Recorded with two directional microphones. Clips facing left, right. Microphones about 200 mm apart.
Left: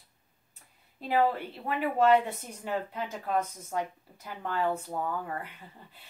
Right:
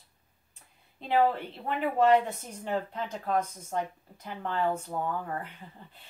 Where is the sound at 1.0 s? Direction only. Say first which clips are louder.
Right 1 dB; 5° left (ahead or behind).